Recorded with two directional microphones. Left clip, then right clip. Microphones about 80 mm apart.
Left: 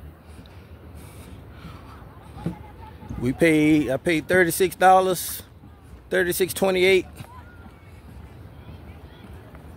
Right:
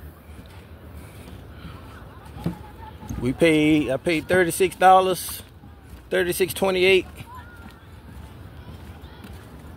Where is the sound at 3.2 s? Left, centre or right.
Left.